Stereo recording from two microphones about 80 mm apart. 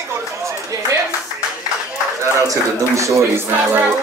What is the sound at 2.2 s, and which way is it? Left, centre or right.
Speech, right.